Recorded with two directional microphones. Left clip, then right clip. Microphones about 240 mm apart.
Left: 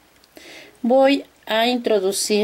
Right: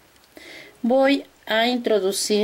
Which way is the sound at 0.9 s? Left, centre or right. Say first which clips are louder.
Left 3 dB; centre.